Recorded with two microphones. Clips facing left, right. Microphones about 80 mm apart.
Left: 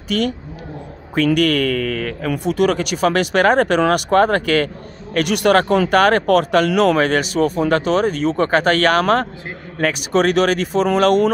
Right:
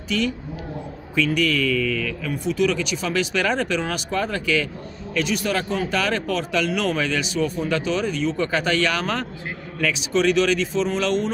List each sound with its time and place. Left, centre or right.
0.1 s speech: left